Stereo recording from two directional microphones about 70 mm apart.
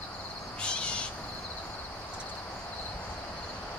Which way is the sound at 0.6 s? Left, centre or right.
Centre.